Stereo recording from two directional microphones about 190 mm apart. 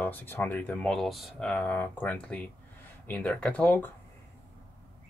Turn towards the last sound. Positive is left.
turn(degrees=10)  # may be behind; listen again after turning